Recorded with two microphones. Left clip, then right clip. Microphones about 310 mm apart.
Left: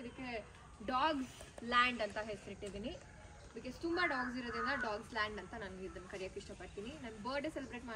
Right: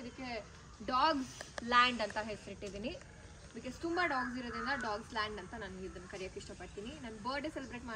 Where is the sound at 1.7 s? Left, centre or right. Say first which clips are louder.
Right 4 dB; centre.